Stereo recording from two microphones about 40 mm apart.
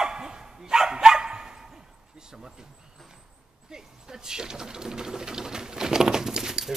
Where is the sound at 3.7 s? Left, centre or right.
Centre.